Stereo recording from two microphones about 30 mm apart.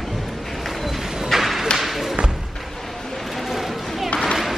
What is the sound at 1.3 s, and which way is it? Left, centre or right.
Whip, centre.